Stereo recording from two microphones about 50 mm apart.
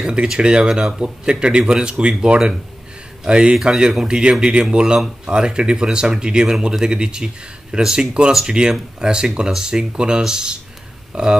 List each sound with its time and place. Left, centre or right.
0.0 s speech: centre